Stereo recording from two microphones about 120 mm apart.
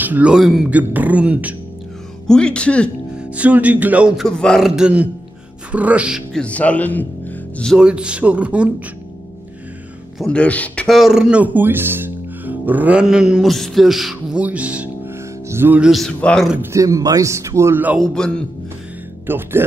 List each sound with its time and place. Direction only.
0.0 s speech: 10° right (ahead or behind)
2.2 s speech: 5° left (ahead or behind)
3.2 s speech: 10° right (ahead or behind)
4.2 s a man's voice: 5° left (ahead or behind)
6.3 s speech: 10° left (ahead or behind)
7.7 s speech: 5° right (ahead or behind)
10.1 s speech: 5° left (ahead or behind)
10.9 s speech: 5° right (ahead or behind)
15.0 s music: 20° right (ahead or behind)
15.8 s a man's voice: centre (ahead or behind)
16.7 s speech: 30° right (ahead or behind)
17.9 s a man's voice: 5° left (ahead or behind)
19.2 s speech: 15° right (ahead or behind)